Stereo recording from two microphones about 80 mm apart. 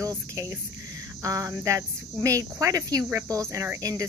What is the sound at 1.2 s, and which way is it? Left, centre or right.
Speech, right.